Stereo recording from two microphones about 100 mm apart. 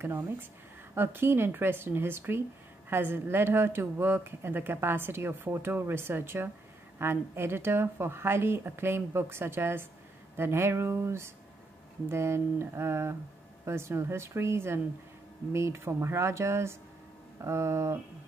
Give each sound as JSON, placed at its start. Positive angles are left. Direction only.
{"t": 0.0, "sound": "speech", "side_deg": -20}